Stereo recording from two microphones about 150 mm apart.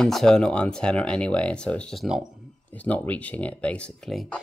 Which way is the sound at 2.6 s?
10° left (ahead or behind).